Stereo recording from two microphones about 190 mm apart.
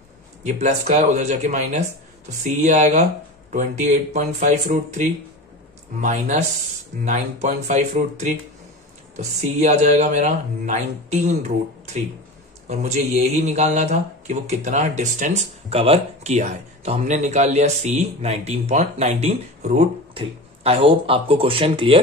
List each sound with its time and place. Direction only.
0.5 s speech: 35° right (ahead or behind)